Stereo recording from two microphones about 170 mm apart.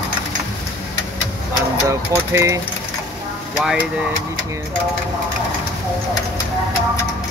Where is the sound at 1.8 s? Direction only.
15° right (ahead or behind).